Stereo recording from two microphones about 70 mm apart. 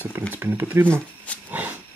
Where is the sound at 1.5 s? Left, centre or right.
Right.